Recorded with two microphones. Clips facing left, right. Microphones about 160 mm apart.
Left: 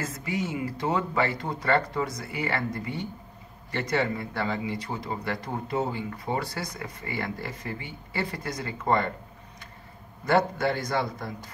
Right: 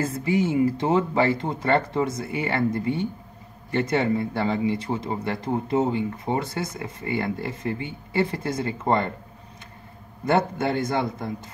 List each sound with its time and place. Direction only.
0.0 s speech: 30° right (ahead or behind)
10.2 s speech: 20° right (ahead or behind)